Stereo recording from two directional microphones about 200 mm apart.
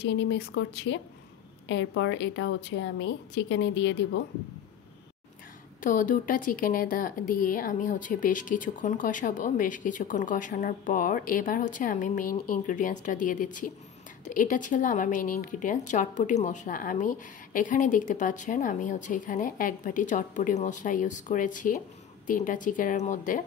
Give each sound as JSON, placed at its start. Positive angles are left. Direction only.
{"t": 0.0, "sound": "a woman's voice", "side_deg": 65}
{"t": 5.8, "sound": "a woman's voice", "side_deg": 40}